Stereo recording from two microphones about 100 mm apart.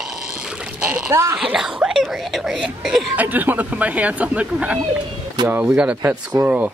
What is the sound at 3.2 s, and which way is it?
Speech, 20° right (ahead or behind).